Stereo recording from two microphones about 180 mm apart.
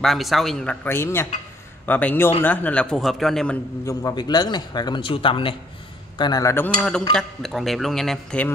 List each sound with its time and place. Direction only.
0.0 s a man's voice: centre (ahead or behind)
3.8 s a man's voice: 20° left (ahead or behind); by 8.5 s 5° left (ahead or behind)